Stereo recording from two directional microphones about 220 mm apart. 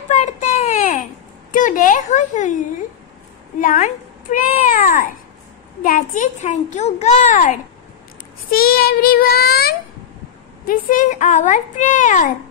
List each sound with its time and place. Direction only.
0.1 s a sound: 35° left (ahead or behind)
1.5 s a woman's voice: 35° left (ahead or behind)
8.5 s child singing: 40° left (ahead or behind)
10.7 s a woman's voice: 40° left (ahead or behind)